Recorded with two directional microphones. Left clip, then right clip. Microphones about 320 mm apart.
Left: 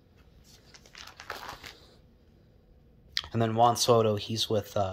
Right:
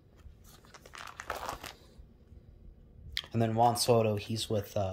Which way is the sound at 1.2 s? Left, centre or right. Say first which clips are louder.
Right 2 dB; centre.